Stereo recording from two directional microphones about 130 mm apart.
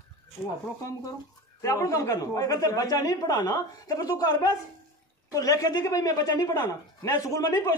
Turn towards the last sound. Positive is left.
turn(degrees=25)  # may be behind; listen again after turning